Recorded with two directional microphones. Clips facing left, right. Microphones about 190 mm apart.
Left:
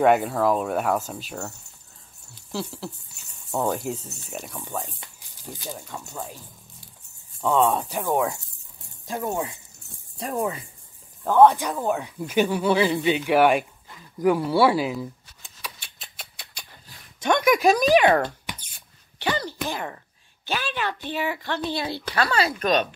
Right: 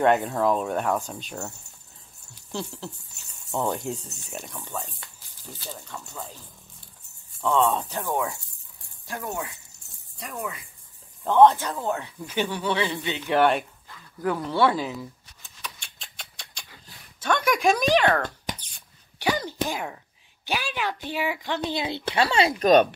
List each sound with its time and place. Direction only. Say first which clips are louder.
0.0 s speech: left 2 dB; 5° left (ahead or behind)
2.5 s speech: left 2 dB; 5° left (ahead or behind)
4.6 s speech: left 4 dB; 15° left (ahead or behind)
7.4 s speech: left 2 dB; 15° left (ahead or behind); by 10.6 s 30° left (ahead or behind)
11.2 s speech: left 1 dB; 5° left (ahead or behind)
13.9 s a sound: left 6 dB; 15° left (ahead or behind)
17.5 s speech: left 4 dB; centre (ahead or behind)
17.9 s speech: left 4 dB; 15° left (ahead or behind)
19.1 s a sound: right 1 dB; 10° right (ahead or behind)
20.4 s a woman's voice: left 1 dB; 15° right (ahead or behind)
22.7 s speech: right 8 dB; 50° right (ahead or behind)